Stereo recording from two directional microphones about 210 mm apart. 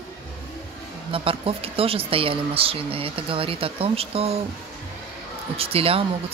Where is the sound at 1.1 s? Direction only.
25° right (ahead or behind).